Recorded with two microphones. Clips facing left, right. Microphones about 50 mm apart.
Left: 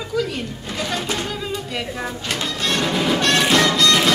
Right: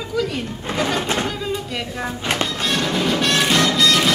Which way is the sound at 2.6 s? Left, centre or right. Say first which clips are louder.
Even; centre.